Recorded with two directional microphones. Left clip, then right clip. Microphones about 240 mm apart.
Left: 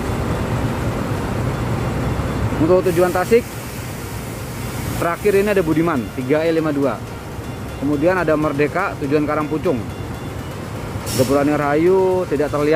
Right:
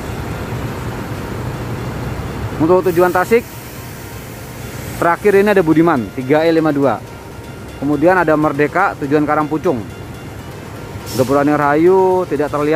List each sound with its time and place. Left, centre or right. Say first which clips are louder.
2.7 s speech: right 3 dB; right
5.0 s speech: right 5 dB; right
8.0 s speech: right 5 dB; right
11.3 s speech: right 5 dB; right